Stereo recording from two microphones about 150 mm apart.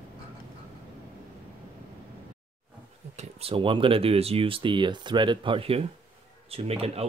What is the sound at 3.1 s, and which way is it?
Speech, 45° right (ahead or behind).